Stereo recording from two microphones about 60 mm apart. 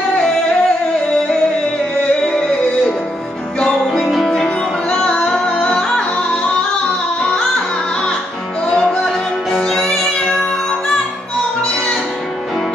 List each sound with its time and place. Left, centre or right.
0.1 s singing: centre
2.2 s music: centre
8.7 s music: centre